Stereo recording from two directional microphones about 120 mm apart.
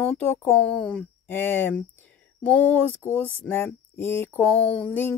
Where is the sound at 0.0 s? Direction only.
20° left (ahead or behind).